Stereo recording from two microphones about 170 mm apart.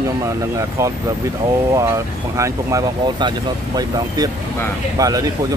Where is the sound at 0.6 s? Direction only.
20° right (ahead or behind).